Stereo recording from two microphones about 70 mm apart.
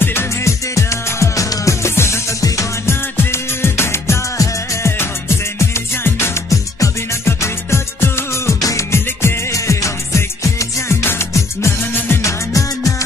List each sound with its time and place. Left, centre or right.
0.0 s music: left
3.2 s music: left
6.5 s music: left
8.5 s music: left
8.9 s music: left
12.2 s music: left